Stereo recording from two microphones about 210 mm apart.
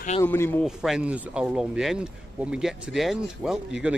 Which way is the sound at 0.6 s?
5° right (ahead or behind).